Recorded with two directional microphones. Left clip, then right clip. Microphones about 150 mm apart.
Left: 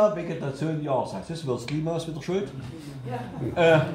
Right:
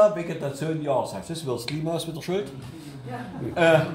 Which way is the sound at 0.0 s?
75° right (ahead or behind).